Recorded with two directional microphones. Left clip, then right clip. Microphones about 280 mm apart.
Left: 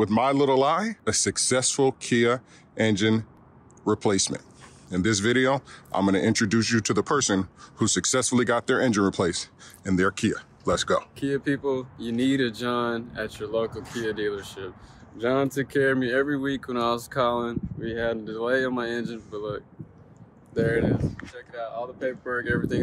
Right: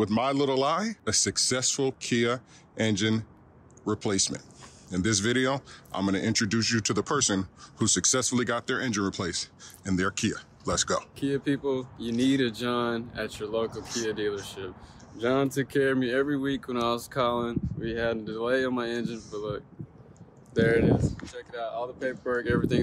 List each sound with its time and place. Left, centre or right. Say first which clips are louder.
0.0 s speech: left 4 dB; centre
21.4 s speech: even; right